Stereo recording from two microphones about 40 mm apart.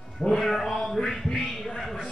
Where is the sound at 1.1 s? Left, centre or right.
Centre.